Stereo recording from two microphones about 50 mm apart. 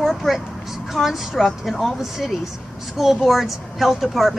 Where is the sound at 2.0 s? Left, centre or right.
Centre.